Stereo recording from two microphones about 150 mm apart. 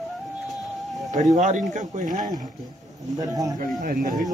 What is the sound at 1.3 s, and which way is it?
Speech, 55° right (ahead or behind).